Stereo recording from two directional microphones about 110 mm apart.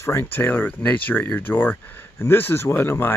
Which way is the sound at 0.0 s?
25° left (ahead or behind).